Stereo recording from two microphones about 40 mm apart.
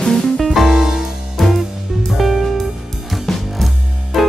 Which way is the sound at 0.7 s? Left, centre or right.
Centre.